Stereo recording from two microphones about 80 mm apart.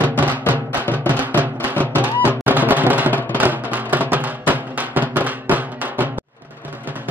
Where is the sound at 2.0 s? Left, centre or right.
Right.